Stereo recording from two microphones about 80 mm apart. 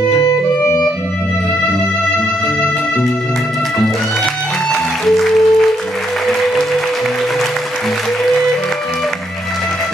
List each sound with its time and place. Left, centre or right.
0.2 s music: left
5.0 s music: centre